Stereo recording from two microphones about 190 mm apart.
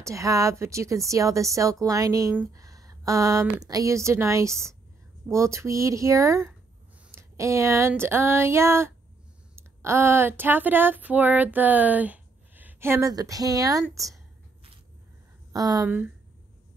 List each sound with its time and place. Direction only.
0.0 s speech: 15° right (ahead or behind)
15.5 s speech: 20° right (ahead or behind)